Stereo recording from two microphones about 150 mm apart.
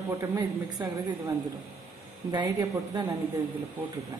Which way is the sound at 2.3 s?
25° right (ahead or behind).